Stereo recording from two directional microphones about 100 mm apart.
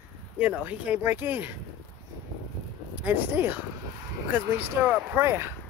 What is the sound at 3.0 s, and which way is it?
Speech, 20° right (ahead or behind).